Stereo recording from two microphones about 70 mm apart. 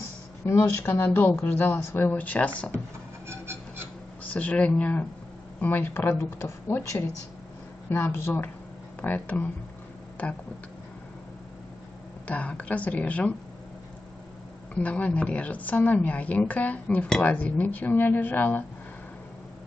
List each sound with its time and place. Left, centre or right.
0.5 s a woman's voice: left
3.3 s a sound: right
4.2 s speech: left
9.0 s a woman's voice: left
12.3 s a woman's voice: centre
14.7 s a woman's voice: left